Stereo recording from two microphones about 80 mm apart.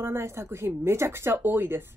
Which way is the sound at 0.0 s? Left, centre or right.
Right.